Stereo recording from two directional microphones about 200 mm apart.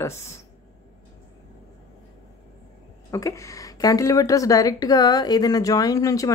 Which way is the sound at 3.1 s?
15° left (ahead or behind).